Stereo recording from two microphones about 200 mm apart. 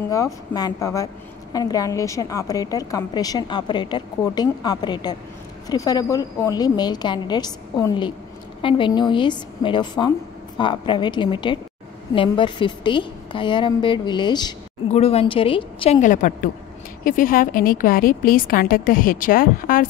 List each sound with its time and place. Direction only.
0.1 s a woman's voice: 20° left (ahead or behind); by 19.9 s 45° left (ahead or behind)